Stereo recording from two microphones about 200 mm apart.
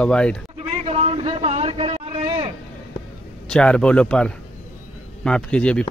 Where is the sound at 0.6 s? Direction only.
30° right (ahead or behind).